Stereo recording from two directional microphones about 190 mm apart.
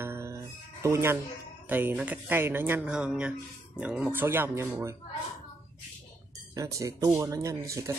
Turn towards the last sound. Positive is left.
turn(degrees=-15)  # may be behind; listen again after turning